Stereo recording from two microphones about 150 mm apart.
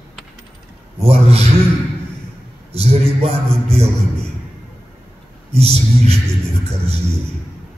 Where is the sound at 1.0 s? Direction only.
40° right (ahead or behind).